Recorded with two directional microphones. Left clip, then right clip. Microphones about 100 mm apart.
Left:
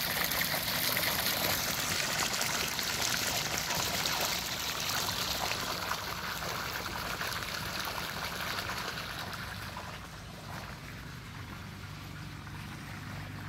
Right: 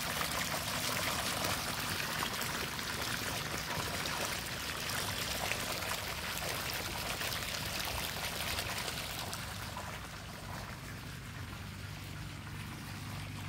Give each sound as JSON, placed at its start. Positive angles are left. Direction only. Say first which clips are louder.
{"t": 0.0, "sound": "vehicle", "louder": "left 4 dB", "side_deg": 10}
{"t": 1.6, "sound": "a sound", "louder": "left 4 dB", "side_deg": 35}
{"t": 1.9, "sound": "water", "louder": "left 4 dB", "side_deg": 60}